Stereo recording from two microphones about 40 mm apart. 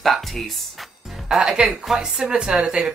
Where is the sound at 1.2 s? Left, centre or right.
Centre.